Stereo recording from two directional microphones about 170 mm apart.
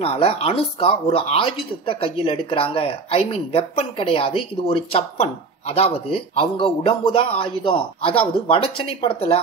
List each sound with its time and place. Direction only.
0.0 s speech: 35° left (ahead or behind)